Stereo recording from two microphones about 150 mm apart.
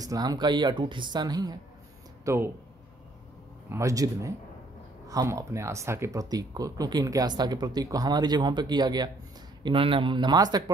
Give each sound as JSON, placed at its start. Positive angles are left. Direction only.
{"t": 0.0, "sound": "speech", "side_deg": -25}
{"t": 2.2, "sound": "speech", "side_deg": -15}
{"t": 3.7, "sound": "speech", "side_deg": -20}